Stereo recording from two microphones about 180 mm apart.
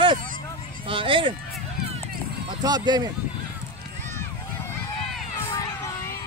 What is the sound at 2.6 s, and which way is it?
Speech, 20° right (ahead or behind).